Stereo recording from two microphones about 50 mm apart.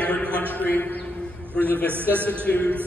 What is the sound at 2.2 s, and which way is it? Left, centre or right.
Speech, left.